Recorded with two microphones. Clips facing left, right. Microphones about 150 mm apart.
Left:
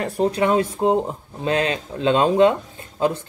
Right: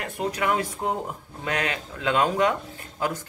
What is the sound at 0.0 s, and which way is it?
Speech, 30° left (ahead or behind).